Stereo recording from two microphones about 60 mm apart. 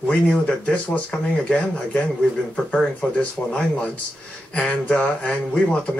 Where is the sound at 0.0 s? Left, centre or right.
Centre.